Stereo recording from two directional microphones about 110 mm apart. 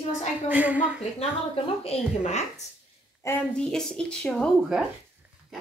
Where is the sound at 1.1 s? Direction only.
60° left (ahead or behind); by 2.5 s 80° left.